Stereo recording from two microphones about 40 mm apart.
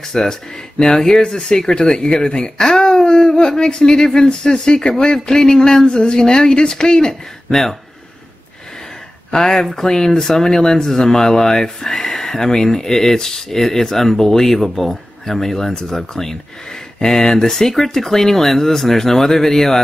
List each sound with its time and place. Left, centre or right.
0.1 s speech: centre
9.3 s speech: centre